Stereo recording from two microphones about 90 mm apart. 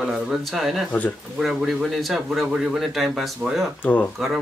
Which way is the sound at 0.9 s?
20° left (ahead or behind).